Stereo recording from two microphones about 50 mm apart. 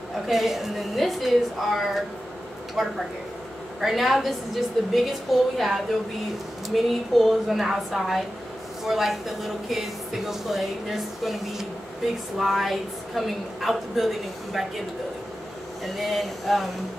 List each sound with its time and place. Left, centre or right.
0.3 s speech: centre
15.8 s speech: centre